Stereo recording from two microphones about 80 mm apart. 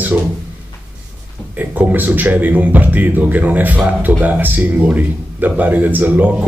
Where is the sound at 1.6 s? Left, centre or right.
Right.